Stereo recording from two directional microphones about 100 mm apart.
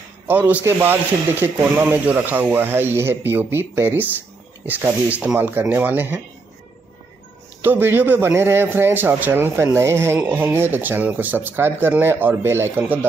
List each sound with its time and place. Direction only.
0.3 s a man's voice: 15° right (ahead or behind)
7.6 s a man's voice: 20° right (ahead or behind)